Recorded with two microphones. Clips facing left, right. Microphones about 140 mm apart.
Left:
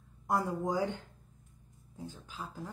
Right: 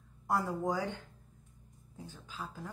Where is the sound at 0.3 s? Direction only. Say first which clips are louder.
Left 1 dB; 20° left (ahead or behind).